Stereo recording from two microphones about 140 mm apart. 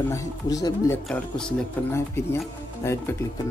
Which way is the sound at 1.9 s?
20° left (ahead or behind).